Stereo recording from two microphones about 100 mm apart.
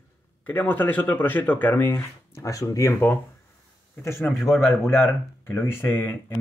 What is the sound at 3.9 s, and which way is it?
Speech, 25° left (ahead or behind).